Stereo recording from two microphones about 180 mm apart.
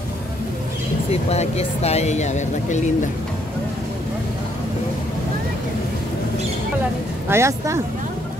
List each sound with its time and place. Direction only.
1.1 s speech: 35° left (ahead or behind)
7.2 s speech: 15° right (ahead or behind)